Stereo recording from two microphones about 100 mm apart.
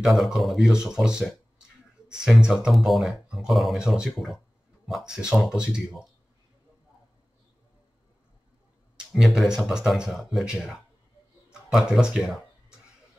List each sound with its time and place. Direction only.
0.0 s speech: 5° right (ahead or behind)
9.1 s speech: centre (ahead or behind)